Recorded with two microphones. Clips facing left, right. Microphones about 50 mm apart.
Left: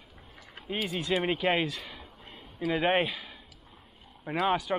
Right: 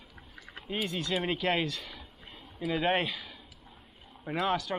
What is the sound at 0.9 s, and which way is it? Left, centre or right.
Speech, centre.